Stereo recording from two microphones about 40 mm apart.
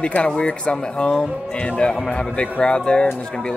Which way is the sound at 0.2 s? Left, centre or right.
Left.